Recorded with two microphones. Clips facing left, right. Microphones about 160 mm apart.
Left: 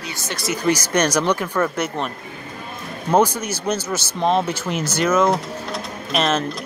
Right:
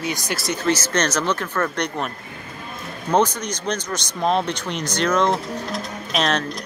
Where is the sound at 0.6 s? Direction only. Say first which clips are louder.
Left 3 dB; 15° left (ahead or behind).